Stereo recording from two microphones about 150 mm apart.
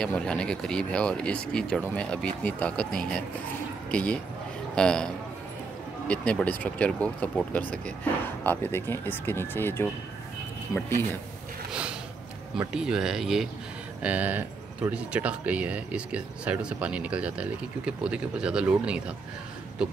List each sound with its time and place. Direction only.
0.0 s speech: 5° left (ahead or behind)
12.5 s speech: 5° right (ahead or behind)